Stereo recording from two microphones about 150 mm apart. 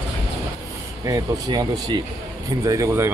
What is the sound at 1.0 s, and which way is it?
Speech, 25° right (ahead or behind).